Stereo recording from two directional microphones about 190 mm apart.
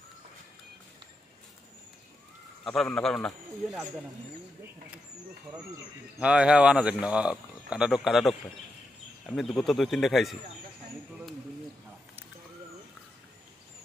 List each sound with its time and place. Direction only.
2.6 s speech: centre (ahead or behind)
6.1 s speech: 5° right (ahead or behind)